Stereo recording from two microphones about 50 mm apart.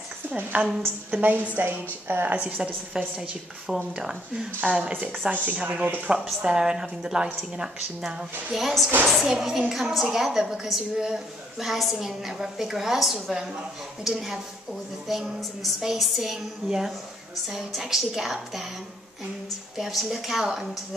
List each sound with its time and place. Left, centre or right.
0.5 s a woman's voice: right
3.2 s a woman's voice: centre
4.6 s a woman's voice: right; by 9.3 s centre
9.3 s a woman's voice: centre
19.8 s a woman's voice: centre